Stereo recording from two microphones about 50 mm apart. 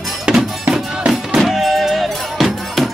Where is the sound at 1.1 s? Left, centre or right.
Centre.